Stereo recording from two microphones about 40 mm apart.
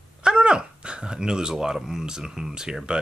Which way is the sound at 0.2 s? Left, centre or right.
Right.